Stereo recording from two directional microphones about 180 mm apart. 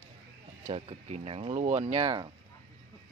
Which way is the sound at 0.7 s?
30° right (ahead or behind).